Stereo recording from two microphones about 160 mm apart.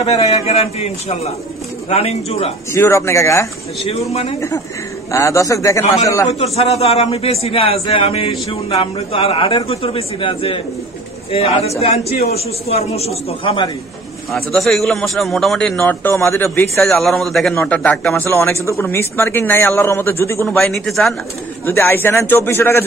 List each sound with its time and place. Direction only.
0.0 s a man's voice: 40° left (ahead or behind)
2.7 s a man's voice: 15° left (ahead or behind)
4.1 s a man's voice: 40° left (ahead or behind)
5.1 s a man's voice: 20° left (ahead or behind)
6.2 s a man's voice: 40° left (ahead or behind)
14.3 s a man's voice: centre (ahead or behind)
16.8 s a man's voice: centre (ahead or behind)
20.4 s a man's voice: centre (ahead or behind)
21.6 s a man's voice: 15° left (ahead or behind)